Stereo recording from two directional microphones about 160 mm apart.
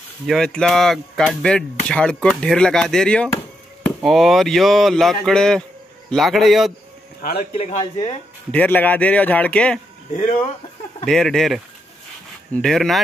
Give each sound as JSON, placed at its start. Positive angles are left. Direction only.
{"t": 0.3, "sound": "speech", "side_deg": 5}
{"t": 7.3, "sound": "speech", "side_deg": 40}
{"t": 8.5, "sound": "speech", "side_deg": 10}
{"t": 11.1, "sound": "speech", "side_deg": 5}